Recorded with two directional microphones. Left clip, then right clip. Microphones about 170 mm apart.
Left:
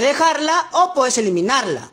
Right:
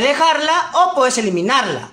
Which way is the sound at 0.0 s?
45° left (ahead or behind).